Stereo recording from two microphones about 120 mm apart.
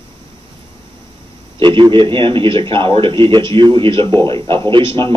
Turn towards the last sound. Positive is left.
turn(degrees=-45)  # may be behind; listen again after turning